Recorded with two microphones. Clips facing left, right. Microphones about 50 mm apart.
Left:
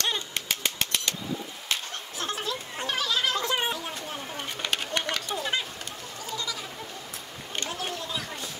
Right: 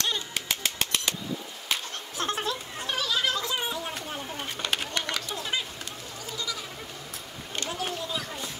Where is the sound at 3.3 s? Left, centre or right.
Left.